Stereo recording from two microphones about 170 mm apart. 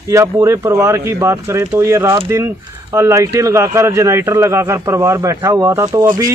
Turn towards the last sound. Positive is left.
turn(degrees=-20)  # may be behind; listen again after turning